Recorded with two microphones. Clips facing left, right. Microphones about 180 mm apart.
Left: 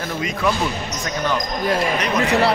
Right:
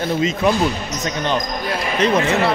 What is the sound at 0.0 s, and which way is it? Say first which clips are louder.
Speech: right 4 dB; 25° right (ahead or behind).